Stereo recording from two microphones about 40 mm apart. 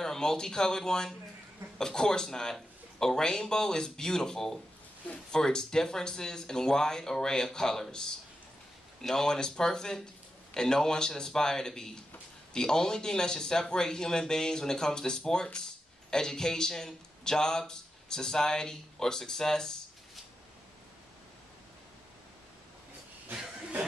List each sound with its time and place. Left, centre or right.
0.0 s a man's voice: centre